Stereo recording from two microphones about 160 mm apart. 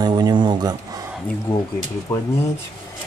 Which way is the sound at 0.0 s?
25° right (ahead or behind).